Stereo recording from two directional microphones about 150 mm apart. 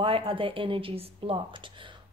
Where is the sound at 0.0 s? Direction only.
35° right (ahead or behind).